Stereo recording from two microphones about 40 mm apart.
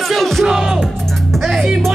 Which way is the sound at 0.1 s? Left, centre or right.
Centre.